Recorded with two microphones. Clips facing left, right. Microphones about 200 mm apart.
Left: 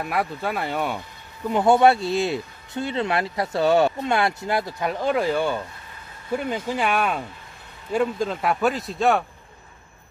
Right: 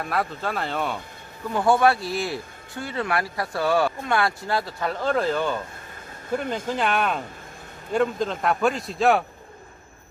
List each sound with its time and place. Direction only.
0.0 s speech: 10° left (ahead or behind)
1.5 s speech: 20° left (ahead or behind); by 9.2 s centre (ahead or behind)